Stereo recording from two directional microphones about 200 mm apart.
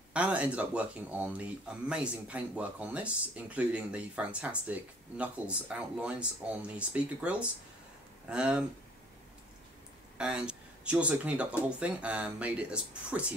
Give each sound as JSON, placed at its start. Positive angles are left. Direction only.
{"t": 0.1, "sound": "speech", "side_deg": -5}
{"t": 10.1, "sound": "speech", "side_deg": -5}